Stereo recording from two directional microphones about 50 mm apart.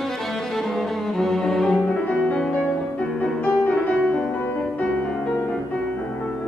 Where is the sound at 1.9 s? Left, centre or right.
Left.